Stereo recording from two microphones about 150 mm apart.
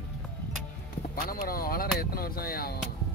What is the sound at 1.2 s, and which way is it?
Speech, 80° left.